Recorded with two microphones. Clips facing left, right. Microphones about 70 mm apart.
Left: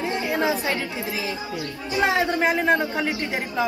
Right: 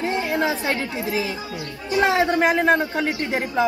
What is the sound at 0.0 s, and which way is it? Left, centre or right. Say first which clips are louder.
A woman's voice: right 1 dB; right.